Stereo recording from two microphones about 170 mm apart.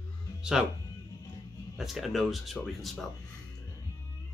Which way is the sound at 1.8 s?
Centre (ahead or behind).